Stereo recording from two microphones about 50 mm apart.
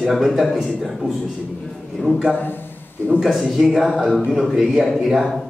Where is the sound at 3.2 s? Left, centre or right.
Centre.